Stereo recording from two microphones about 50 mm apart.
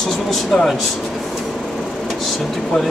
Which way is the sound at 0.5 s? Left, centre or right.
Centre.